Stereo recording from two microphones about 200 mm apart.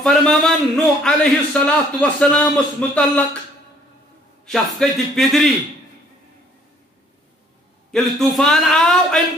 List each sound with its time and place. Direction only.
0.0 s a man's voice: centre (ahead or behind)
4.5 s a man's voice: centre (ahead or behind)
7.9 s a man's voice: centre (ahead or behind)